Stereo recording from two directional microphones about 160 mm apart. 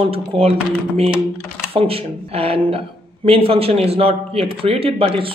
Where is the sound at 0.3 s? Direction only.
35° right (ahead or behind).